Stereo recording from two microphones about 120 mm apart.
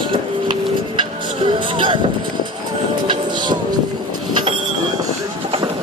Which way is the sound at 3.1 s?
40° right (ahead or behind).